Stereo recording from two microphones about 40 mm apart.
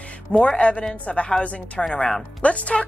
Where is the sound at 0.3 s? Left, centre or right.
Left.